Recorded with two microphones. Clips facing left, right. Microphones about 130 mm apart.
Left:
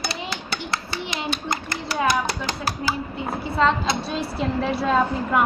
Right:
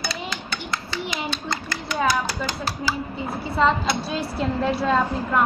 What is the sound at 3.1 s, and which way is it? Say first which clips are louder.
A woman's voice: left 1 dB; centre (ahead or behind).